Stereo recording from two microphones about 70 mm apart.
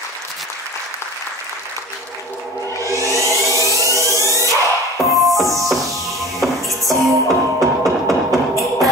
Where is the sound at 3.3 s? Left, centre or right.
Left.